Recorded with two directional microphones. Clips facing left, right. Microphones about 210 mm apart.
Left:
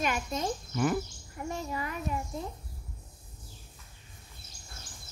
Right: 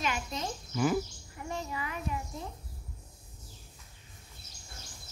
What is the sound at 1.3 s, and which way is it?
Speech, 45° left (ahead or behind).